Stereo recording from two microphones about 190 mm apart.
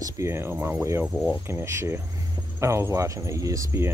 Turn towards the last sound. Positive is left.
turn(degrees=-15)  # may be behind; listen again after turning